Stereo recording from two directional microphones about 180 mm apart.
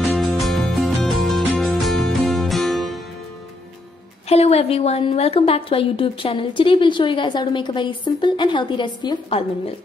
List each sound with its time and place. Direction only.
0.2 s music: centre (ahead or behind)
4.3 s a woman's voice: 35° left (ahead or behind)